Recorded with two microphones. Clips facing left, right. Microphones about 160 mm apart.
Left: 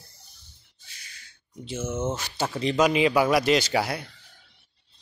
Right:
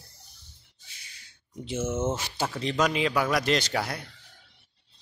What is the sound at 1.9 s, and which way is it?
Speech, 5° right (ahead or behind).